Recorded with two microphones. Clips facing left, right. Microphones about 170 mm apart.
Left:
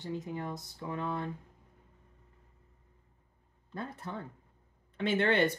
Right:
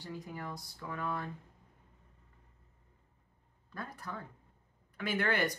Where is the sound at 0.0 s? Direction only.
20° left (ahead or behind).